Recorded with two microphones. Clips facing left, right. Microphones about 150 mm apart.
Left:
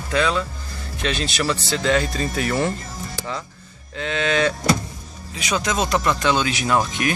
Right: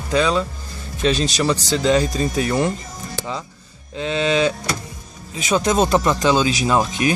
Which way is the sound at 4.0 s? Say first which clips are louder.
Right 3 dB; 30° right (ahead or behind).